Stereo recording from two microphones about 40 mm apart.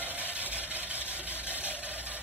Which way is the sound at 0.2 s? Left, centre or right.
Left.